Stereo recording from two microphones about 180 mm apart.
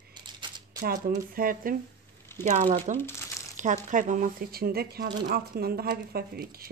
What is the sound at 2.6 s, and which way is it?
Speech, 35° right (ahead or behind).